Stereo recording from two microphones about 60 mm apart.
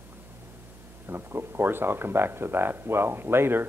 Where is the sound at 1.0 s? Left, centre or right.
Right.